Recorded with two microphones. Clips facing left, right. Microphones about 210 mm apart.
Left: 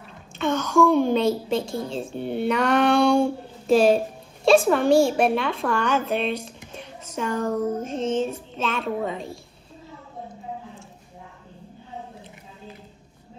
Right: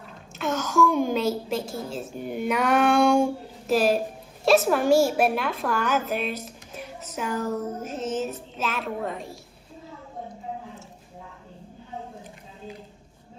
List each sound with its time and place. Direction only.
0.4 s a sound: 5° right (ahead or behind)
1.1 s a woman's voice: 5° right (ahead or behind)
2.0 s music: 30° left (ahead or behind)
2.4 s music: 10° right (ahead or behind)
3.7 s a woman's voice: centre (ahead or behind)
6.8 s a sound: 5° right (ahead or behind)
7.8 s music: 30° left (ahead or behind)
8.5 s a woman's voice: 5° right (ahead or behind)